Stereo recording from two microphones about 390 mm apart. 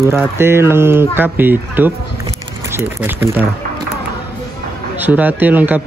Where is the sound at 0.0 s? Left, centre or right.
Centre.